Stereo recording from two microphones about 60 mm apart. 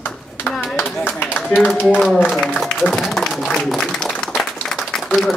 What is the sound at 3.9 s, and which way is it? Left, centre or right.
Applause, centre.